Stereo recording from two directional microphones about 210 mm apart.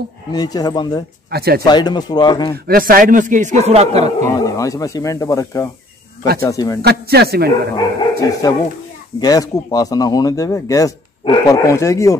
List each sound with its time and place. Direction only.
0.3 s speech: 20° left (ahead or behind)
1.3 s a man's voice: 50° right (ahead or behind)
1.6 s speech: 20° left (ahead or behind)
2.5 s a man's voice: 45° right (ahead or behind); by 4.1 s 30° right (ahead or behind)
4.2 s speech: 15° left (ahead or behind)
6.8 s a man's voice: 50° right (ahead or behind)
7.7 s speech: 15° left (ahead or behind)